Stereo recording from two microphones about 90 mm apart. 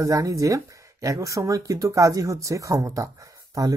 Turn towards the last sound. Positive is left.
turn(degrees=-40)  # may be behind; listen again after turning